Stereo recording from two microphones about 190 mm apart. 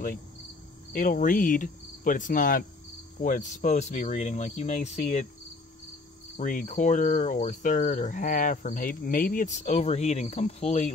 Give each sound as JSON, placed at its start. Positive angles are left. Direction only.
{"t": 0.9, "sound": "cricket", "side_deg": 45}
{"t": 6.3, "sound": "cricket", "side_deg": 45}